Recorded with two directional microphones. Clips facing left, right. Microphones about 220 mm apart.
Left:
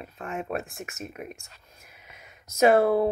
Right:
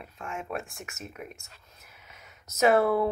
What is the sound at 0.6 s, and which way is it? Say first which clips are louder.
Speech: left 5 dB; 20° left (ahead or behind).